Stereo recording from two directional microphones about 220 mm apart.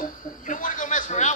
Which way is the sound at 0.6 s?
35° left (ahead or behind).